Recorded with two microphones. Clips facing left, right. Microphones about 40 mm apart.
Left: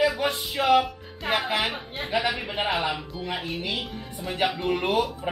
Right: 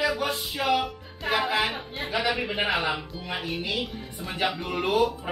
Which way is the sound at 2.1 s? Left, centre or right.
Centre.